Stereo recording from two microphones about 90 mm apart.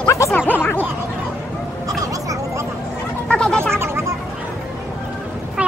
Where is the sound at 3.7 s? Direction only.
25° right (ahead or behind).